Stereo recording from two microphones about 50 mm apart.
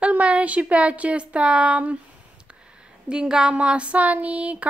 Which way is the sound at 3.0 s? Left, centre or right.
Centre.